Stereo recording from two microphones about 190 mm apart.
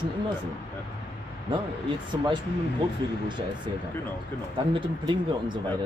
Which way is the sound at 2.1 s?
25° right (ahead or behind).